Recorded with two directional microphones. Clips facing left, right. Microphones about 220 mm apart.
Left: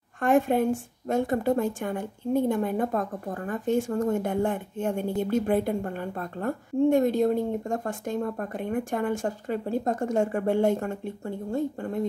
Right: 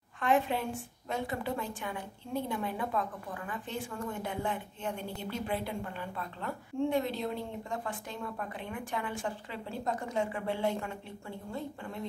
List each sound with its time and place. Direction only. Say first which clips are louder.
0.2 s a woman's voice: left 8 dB; 45° left (ahead or behind)